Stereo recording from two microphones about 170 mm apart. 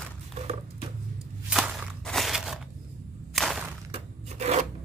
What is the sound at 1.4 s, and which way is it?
Walk, 5° right (ahead or behind).